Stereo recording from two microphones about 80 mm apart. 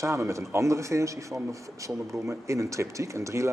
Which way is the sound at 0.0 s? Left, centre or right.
Right.